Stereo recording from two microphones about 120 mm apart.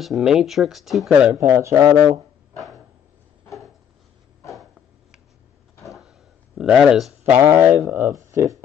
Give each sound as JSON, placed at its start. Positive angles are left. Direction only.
{"t": 0.0, "sound": "speech", "side_deg": 0}
{"t": 1.4, "sound": "speech", "side_deg": -20}
{"t": 4.6, "sound": "a sound", "side_deg": -5}
{"t": 7.3, "sound": "speech", "side_deg": -20}